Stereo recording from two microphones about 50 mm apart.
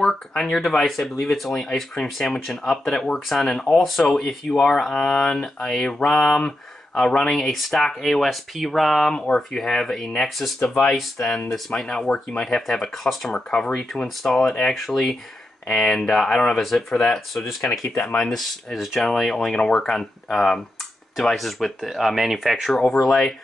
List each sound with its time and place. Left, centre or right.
0.6 s speech: centre
3.7 s speech: centre
9.1 s speech: centre
10.6 s speech: centre
17.6 s speech: left
18.0 s speech: centre
22.7 s speech: centre